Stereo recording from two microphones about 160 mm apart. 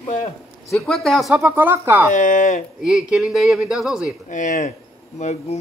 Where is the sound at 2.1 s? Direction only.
55° left (ahead or behind).